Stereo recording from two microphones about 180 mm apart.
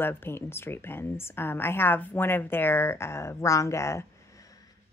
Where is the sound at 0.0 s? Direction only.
10° left (ahead or behind).